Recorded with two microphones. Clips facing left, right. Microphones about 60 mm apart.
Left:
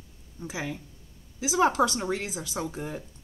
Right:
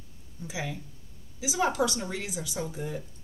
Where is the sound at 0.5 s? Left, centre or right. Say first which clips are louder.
Left 1 dB; left.